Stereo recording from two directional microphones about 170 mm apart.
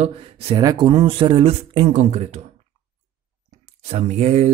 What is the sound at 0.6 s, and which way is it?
Speech, 25° right (ahead or behind).